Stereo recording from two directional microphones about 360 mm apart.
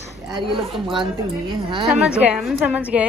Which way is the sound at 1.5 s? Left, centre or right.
Centre.